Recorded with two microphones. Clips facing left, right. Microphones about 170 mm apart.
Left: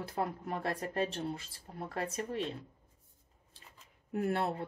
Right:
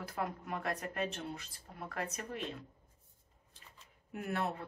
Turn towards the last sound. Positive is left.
turn(degrees=30)  # may be behind; listen again after turning